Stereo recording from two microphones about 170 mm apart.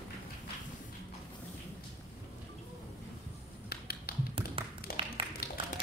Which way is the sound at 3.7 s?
65° left (ahead or behind).